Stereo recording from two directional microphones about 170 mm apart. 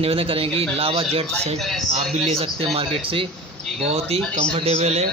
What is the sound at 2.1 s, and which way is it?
Speech, 35° right (ahead or behind).